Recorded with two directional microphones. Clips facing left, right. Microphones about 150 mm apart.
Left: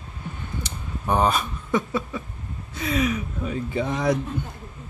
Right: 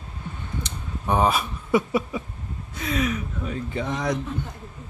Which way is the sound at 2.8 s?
5° left (ahead or behind).